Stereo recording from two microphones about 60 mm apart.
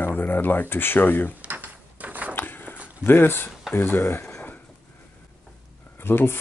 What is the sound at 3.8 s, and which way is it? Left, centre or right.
Speech, left.